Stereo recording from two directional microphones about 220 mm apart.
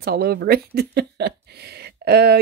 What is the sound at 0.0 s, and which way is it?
Speech, 45° right (ahead or behind).